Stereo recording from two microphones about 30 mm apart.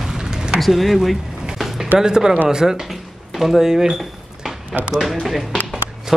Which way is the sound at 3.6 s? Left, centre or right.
Centre.